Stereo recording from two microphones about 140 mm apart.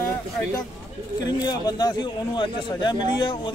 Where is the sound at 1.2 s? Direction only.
30° left (ahead or behind).